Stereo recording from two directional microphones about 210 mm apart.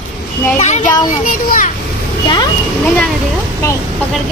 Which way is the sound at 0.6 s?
35° left (ahead or behind).